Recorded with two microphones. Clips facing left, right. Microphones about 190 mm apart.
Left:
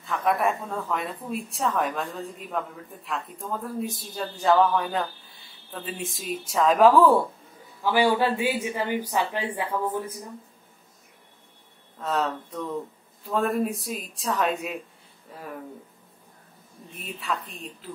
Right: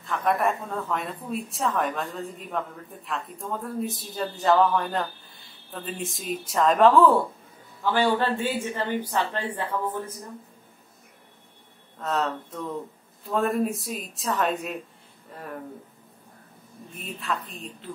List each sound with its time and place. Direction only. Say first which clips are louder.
0.0 s a woman's voice: even; centre (ahead or behind)
12.0 s a woman's voice: even; centre (ahead or behind)
16.9 s a woman's voice: even; centre (ahead or behind)